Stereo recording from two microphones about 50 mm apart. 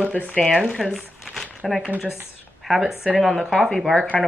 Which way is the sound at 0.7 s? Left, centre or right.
Centre.